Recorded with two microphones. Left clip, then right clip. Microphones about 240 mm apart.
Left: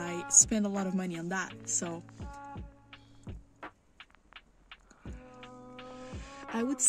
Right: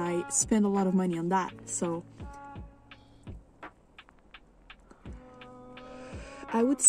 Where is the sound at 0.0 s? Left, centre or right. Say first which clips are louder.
Right 6 dB; centre.